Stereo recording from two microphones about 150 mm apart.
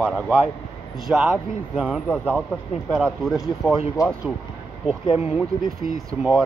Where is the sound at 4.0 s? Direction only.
25° left (ahead or behind).